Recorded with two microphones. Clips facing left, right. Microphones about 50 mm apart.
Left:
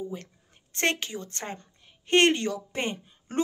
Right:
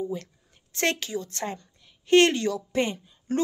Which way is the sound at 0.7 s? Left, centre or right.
Left.